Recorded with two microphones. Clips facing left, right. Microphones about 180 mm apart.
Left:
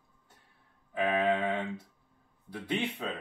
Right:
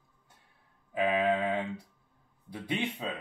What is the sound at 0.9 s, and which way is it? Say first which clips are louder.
Speech: right 1 dB; 10° right (ahead or behind).